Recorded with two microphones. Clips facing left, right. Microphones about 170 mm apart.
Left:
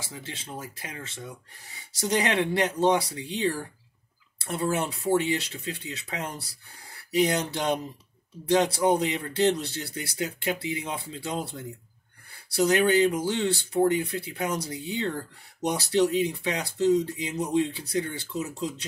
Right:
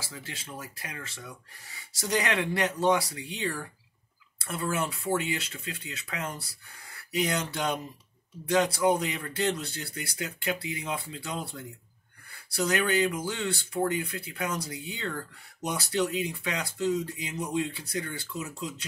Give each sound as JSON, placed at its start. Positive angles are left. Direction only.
{"t": 0.0, "sound": "speech", "side_deg": 25}